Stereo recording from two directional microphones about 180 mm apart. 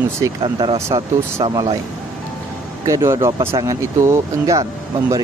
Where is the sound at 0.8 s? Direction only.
15° right (ahead or behind).